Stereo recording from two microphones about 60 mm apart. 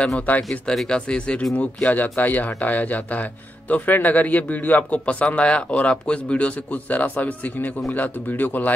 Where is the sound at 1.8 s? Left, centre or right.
Left.